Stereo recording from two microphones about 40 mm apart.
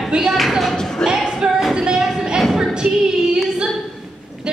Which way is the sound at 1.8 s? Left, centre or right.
Centre.